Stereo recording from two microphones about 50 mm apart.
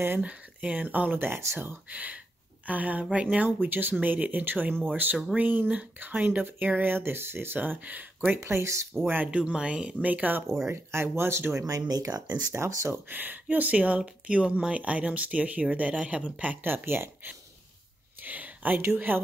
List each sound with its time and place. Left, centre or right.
0.2 s speech: right
1.9 s speech: right
3.6 s speech: right
7.5 s speech: right
8.4 s speech: right
9.0 s speech: right
9.3 s speech: right
10.7 s speech: right
13.1 s speech: right
16.6 s speech: right
18.2 s speech: right